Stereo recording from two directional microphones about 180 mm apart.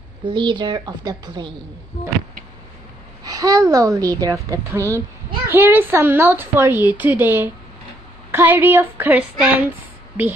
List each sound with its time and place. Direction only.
0.2 s a woman's voice: 25° right (ahead or behind)
3.3 s a woman's voice: 20° right (ahead or behind)